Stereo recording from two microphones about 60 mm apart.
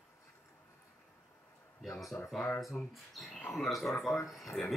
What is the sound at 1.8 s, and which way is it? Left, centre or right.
A man's voice, centre.